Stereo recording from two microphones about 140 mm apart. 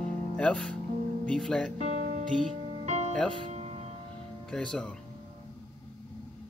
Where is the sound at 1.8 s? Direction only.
60° right (ahead or behind).